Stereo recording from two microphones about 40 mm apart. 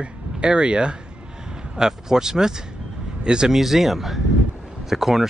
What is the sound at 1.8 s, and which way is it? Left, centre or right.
Speech, centre.